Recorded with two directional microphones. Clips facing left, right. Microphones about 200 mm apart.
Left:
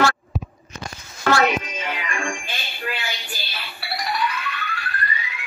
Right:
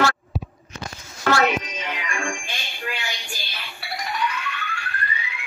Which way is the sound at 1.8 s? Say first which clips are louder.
Left 2 dB; 45° left (ahead or behind).